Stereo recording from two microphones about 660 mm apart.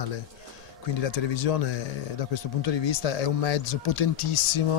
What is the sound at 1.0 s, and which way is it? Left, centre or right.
Speech, left.